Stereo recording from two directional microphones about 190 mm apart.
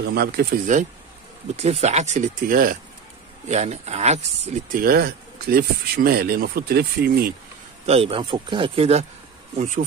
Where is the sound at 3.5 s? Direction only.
35° right (ahead or behind); by 7.2 s 55° right (ahead or behind).